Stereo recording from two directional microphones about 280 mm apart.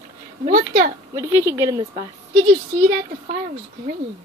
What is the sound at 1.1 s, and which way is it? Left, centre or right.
Speech, centre.